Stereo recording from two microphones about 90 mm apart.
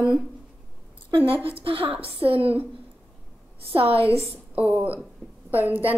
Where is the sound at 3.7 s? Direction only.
90° right.